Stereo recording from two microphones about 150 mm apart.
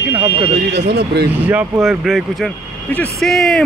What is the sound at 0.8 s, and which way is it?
Speech, 90° right.